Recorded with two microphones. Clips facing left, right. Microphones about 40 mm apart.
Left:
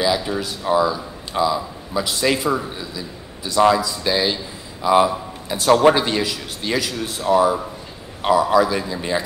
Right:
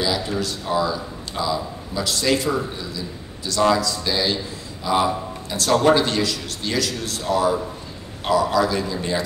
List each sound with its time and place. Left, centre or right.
0.0 s a man's voice: centre